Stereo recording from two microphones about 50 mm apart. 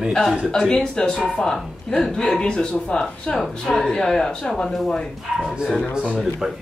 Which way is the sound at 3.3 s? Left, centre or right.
Centre.